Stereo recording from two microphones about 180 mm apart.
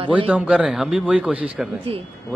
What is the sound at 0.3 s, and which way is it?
A man's voice, 5° right (ahead or behind).